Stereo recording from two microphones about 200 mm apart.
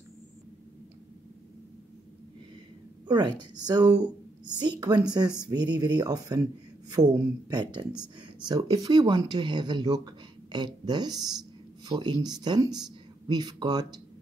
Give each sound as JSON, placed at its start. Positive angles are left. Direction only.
{"t": 3.1, "sound": "speech", "side_deg": -20}